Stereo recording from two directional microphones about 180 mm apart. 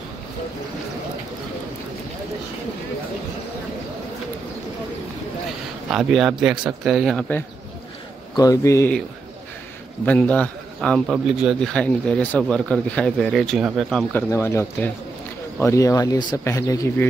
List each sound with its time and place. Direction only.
5.9 s a man's voice: centre (ahead or behind)
8.4 s speech: 20° left (ahead or behind)
10.0 s a man's voice: 5° left (ahead or behind)
14.3 s speech: 15° left (ahead or behind)